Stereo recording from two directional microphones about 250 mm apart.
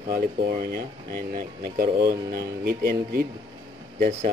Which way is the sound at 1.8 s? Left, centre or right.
Right.